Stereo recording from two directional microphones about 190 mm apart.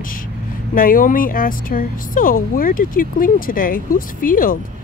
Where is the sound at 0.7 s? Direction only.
45° left (ahead or behind).